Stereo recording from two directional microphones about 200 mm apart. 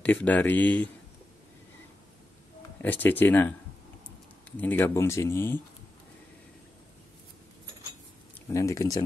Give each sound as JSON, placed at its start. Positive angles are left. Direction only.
{"t": 0.0, "sound": "speech", "side_deg": 10}
{"t": 2.8, "sound": "speech", "side_deg": 10}
{"t": 8.4, "sound": "speech", "side_deg": 15}